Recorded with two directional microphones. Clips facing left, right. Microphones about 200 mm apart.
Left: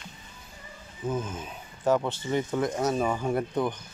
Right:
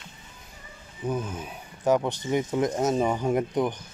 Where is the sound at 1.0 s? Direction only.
15° right (ahead or behind).